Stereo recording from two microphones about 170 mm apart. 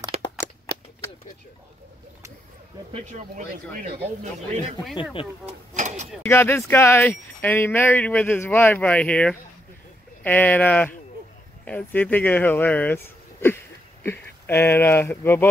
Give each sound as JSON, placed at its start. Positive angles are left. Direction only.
{"t": 0.1, "sound": "a sound", "side_deg": -35}
{"t": 2.9, "sound": "speech", "side_deg": -40}
{"t": 5.2, "sound": "speech", "side_deg": 30}
{"t": 5.8, "sound": "mechanisms", "side_deg": -45}
{"t": 6.2, "sound": "speech", "side_deg": 15}